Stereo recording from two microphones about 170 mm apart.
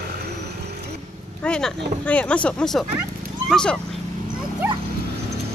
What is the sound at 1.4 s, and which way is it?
Speech, 5° left (ahead or behind).